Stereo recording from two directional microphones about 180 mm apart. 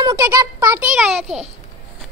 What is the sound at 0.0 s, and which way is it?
A child's voice, 20° right (ahead or behind).